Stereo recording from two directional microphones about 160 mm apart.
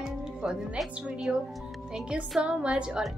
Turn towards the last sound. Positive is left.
turn(degrees=-5)  # may be behind; listen again after turning